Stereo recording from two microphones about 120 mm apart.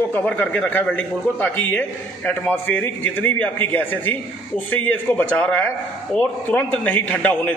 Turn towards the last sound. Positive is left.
turn(degrees=15)  # may be behind; listen again after turning